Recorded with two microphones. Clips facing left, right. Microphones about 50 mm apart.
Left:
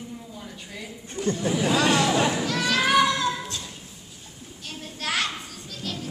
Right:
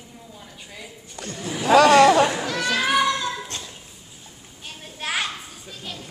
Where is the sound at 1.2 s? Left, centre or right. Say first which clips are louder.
Left 9 dB; right.